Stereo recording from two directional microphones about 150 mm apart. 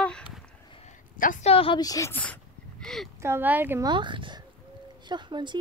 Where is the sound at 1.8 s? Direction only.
20° left (ahead or behind).